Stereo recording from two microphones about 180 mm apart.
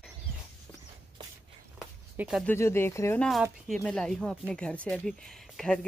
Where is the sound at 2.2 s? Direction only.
Centre (ahead or behind).